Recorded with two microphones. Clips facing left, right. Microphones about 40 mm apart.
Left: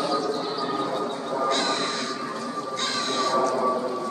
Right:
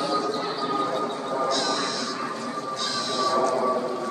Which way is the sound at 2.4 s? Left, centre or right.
Right.